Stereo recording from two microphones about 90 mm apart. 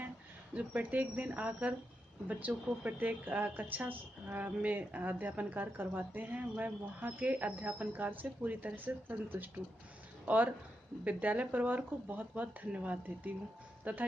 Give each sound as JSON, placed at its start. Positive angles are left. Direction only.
{"t": 0.6, "sound": "speech", "side_deg": -15}